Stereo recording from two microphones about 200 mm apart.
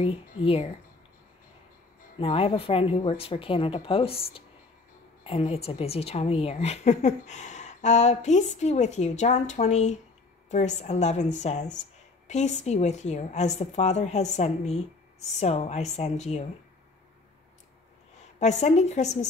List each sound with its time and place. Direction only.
0.0 s speech: 30° left (ahead or behind)
2.1 s a woman's voice: 30° left (ahead or behind)
18.4 s a woman's voice: 35° left (ahead or behind)